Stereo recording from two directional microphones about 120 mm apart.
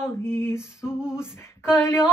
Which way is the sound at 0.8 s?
5° right (ahead or behind).